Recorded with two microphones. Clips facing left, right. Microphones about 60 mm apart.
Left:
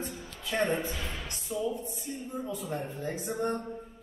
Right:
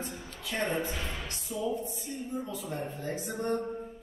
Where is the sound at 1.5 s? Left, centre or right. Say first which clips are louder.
Left 2 dB; left.